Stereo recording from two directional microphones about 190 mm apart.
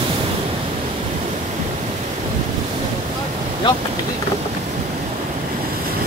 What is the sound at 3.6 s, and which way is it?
Speech, 25° left (ahead or behind).